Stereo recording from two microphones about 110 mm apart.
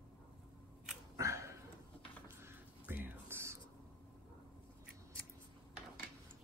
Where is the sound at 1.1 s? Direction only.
30° right (ahead or behind).